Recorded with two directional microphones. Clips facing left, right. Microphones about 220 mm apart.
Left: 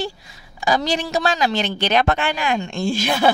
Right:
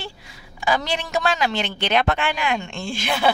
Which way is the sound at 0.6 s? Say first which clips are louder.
Left 3 dB; 35° left (ahead or behind).